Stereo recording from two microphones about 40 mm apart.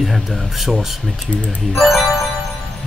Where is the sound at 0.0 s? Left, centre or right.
Centre.